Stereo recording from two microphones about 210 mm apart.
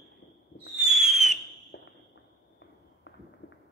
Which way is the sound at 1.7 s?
65° left (ahead or behind).